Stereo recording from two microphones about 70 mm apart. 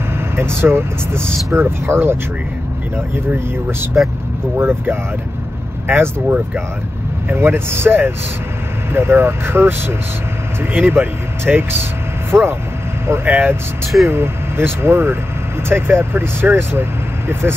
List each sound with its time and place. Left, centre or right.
0.4 s speech: right
3.9 s speech: centre
4.6 s speech: right
6.2 s speech: centre
7.2 s speech: right